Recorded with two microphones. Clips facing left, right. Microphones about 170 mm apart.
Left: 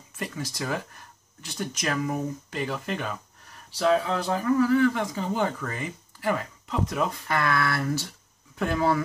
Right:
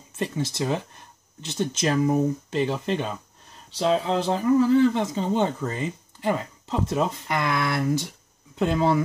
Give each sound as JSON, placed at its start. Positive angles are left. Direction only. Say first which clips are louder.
{"t": 0.2, "sound": "speech", "louder": "right 6 dB", "side_deg": -25}